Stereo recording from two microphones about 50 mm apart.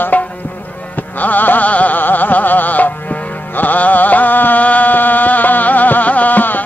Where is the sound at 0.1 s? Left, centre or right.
Left.